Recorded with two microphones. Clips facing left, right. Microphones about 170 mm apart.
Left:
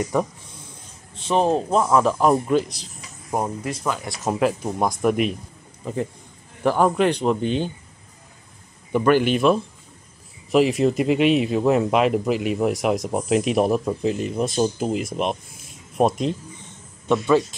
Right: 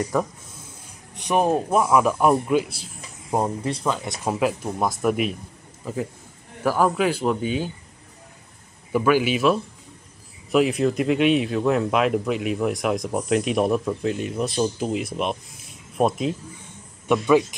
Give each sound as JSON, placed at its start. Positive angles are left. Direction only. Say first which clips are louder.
{"t": 0.0, "sound": "speech", "louder": "left 1 dB", "side_deg": 0}
{"t": 1.1, "sound": "speech", "louder": "left 1 dB", "side_deg": -15}
{"t": 3.3, "sound": "speech", "louder": "right 2 dB", "side_deg": -20}
{"t": 4.3, "sound": "speech", "louder": "left 2 dB", "side_deg": -5}
{"t": 8.9, "sound": "speech", "louder": "left 2 dB", "side_deg": -5}
{"t": 17.1, "sound": "speech", "louder": "even", "side_deg": -15}